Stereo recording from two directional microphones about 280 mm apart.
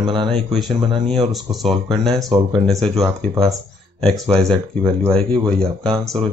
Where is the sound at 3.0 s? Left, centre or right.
Centre.